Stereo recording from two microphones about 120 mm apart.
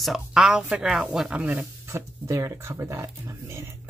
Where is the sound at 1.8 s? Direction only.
25° right (ahead or behind).